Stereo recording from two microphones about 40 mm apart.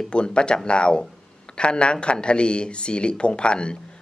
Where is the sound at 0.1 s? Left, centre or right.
Left.